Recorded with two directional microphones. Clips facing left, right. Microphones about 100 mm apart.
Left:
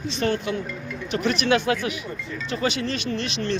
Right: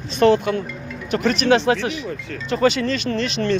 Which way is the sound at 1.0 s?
40° right (ahead or behind).